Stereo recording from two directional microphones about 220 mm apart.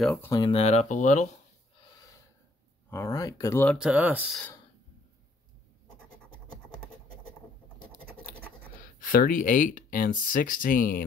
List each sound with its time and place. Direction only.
0.0 s speech: 10° left (ahead or behind); by 1.3 s 30° left (ahead or behind)
2.0 s gasp: 15° left (ahead or behind)
2.9 s speech: 15° left (ahead or behind)
3.8 s speech: 5° right (ahead or behind)
8.8 s speech: 40° left (ahead or behind)